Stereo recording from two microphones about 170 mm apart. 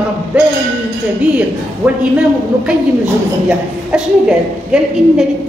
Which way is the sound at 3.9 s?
5° right (ahead or behind).